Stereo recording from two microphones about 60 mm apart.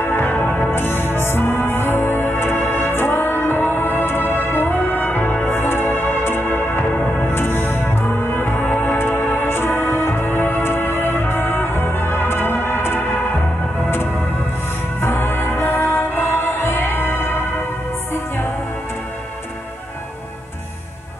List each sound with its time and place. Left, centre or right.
0.0 s music: left
0.7 s music: left
15.0 s music: left